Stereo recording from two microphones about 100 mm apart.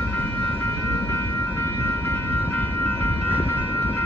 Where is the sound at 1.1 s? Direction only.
25° left (ahead or behind).